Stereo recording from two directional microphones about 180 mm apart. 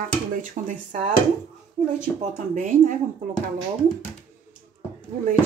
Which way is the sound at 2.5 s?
45° right (ahead or behind).